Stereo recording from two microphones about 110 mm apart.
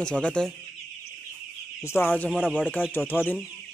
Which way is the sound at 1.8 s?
20° left (ahead or behind).